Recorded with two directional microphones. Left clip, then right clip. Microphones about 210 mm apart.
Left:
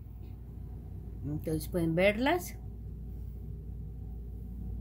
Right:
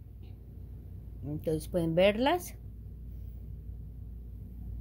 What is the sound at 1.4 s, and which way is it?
A woman's voice, 25° right (ahead or behind).